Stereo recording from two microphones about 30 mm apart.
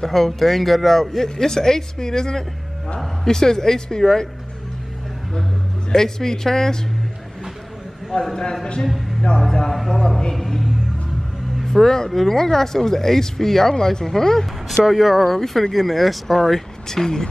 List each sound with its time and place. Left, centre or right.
0.0 s a woman's voice: centre
5.9 s speech: centre
8.1 s a woman's voice: centre
9.7 s speech: centre
11.6 s speech: centre
14.9 s speech: centre
15.3 s speech: centre
16.8 s speech: centre